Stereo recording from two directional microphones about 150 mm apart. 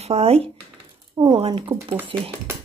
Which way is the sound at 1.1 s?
30° right (ahead or behind).